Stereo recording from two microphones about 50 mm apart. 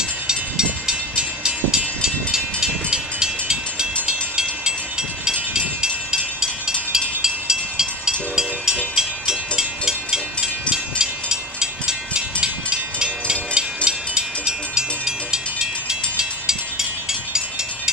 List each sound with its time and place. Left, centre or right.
0.3 s vehicle: centre
4.0 s train: centre
5.2 s a sound: centre
6.4 s vehicle: centre
8.9 s a sound: centre
13.8 s train: centre